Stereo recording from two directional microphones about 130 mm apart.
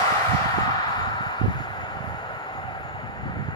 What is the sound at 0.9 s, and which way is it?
Vehicle, 35° left (ahead or behind).